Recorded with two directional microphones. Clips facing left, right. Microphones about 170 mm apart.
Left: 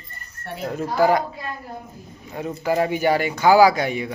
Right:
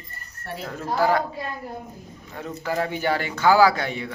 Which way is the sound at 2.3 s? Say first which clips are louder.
Left 5 dB; 15° left (ahead or behind).